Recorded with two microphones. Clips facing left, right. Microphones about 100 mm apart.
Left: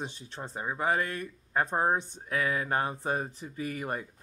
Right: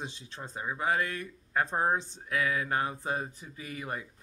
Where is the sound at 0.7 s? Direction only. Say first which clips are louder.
Left 1 dB; 40° left (ahead or behind).